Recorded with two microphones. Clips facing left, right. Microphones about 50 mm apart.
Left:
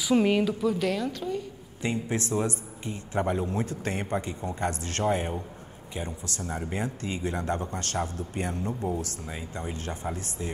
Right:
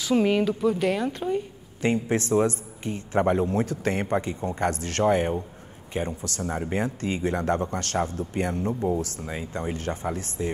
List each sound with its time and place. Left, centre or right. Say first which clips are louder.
0.0 s a woman's voice: right 1 dB; centre; by 1.4 s right
1.8 s a man's voice: right 5 dB; right
5.0 s a woman's voice: right 5 dB; centre
5.9 s a man's voice: right 6 dB; right